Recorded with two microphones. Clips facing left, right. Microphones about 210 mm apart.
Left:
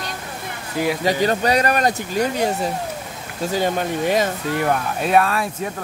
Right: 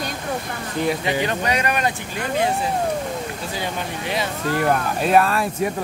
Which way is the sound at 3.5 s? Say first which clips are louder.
Left 9 dB; 45° left (ahead or behind).